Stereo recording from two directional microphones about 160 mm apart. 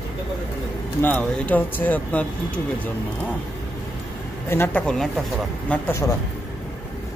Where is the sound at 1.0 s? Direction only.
10° left (ahead or behind).